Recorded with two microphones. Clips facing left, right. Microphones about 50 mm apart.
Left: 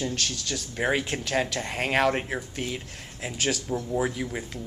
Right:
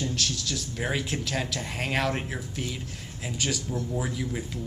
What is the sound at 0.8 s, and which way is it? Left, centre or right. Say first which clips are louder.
Speech: left 5 dB; centre.